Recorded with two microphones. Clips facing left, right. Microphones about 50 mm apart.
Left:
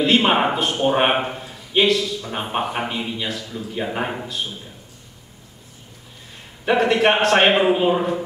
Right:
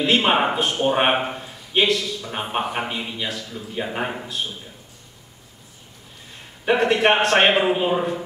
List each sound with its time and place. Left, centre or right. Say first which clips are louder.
0.0 s a man's voice: left 2 dB; centre
6.6 s a man's voice: left 1 dB; centre